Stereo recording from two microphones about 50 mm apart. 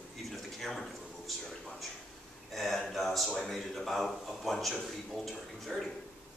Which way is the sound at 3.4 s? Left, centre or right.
Centre.